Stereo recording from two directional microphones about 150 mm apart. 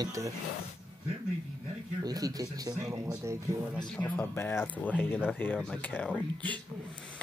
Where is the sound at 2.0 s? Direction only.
25° right (ahead or behind).